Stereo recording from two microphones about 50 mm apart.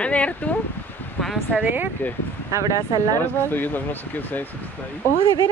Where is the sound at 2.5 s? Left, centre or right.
Right.